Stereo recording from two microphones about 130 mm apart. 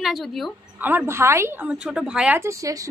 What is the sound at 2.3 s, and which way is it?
Speech, 25° right (ahead or behind).